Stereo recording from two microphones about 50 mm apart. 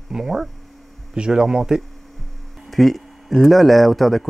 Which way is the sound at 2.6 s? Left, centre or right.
Centre.